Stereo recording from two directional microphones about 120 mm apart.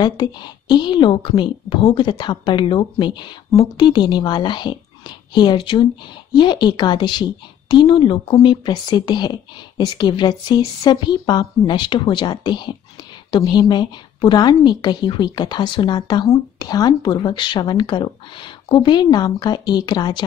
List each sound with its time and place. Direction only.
0.0 s a woman's voice: 35° left (ahead or behind)